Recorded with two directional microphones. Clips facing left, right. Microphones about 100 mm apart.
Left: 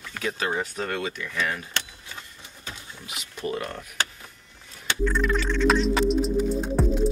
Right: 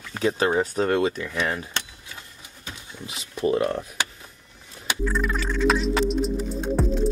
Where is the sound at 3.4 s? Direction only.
25° right (ahead or behind).